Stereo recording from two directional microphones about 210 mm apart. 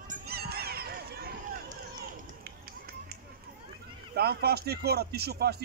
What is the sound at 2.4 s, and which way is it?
Run, 50° right (ahead or behind).